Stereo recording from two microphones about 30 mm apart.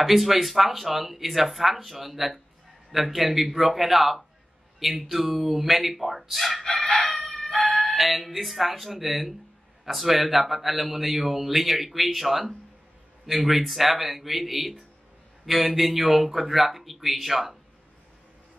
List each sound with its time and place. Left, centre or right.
0.0 s a man's voice: centre
6.6 s crowing: left
7.2 s chicken: left
7.9 s a man's voice: centre